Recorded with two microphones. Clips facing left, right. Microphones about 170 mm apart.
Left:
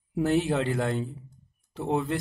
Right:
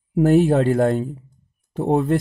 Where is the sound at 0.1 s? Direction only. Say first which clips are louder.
Right 9 dB; 50° right (ahead or behind).